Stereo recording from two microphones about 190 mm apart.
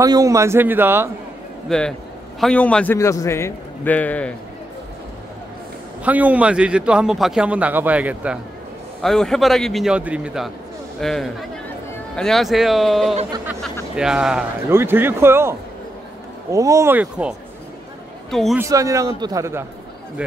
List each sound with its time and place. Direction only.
0.0 s a man's voice: 20° right (ahead or behind)
1.7 s a man's voice: 5° left (ahead or behind)
6.0 s a man's voice: 10° right (ahead or behind)
16.5 s a man's voice: 15° right (ahead or behind)
18.3 s a man's voice: centre (ahead or behind)
18.6 s a man's voice: 15° right (ahead or behind)